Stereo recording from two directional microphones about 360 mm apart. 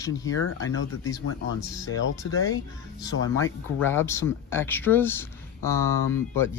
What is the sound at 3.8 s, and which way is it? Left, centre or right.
Speech, centre.